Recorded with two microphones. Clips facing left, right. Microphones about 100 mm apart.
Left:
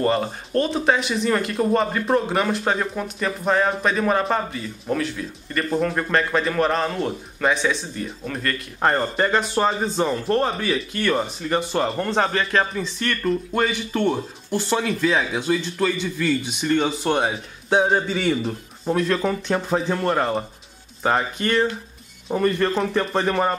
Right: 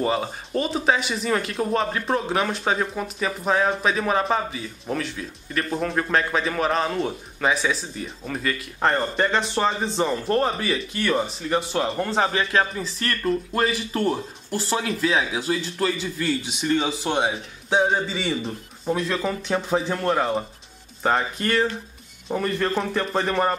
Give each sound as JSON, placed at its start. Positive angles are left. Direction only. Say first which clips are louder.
{"t": 0.0, "sound": "speech", "louder": "left 3 dB", "side_deg": -5}